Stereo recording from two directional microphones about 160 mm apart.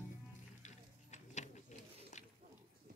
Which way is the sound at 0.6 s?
45° left (ahead or behind).